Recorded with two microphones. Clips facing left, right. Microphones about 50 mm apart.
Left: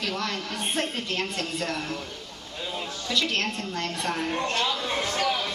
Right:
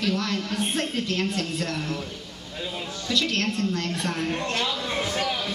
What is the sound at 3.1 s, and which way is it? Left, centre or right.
Speech, centre.